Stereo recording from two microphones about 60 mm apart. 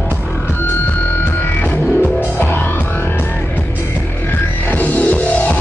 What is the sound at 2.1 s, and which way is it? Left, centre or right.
Music, left.